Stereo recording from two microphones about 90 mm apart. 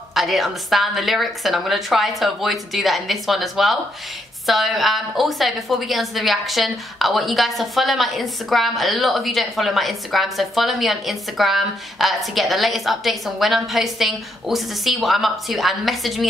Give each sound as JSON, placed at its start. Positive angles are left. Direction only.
{"t": 0.1, "sound": "a woman's voice", "side_deg": 0}